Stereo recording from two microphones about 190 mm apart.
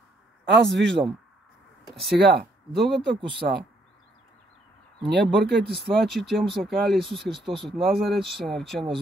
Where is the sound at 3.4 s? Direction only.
50° right (ahead or behind).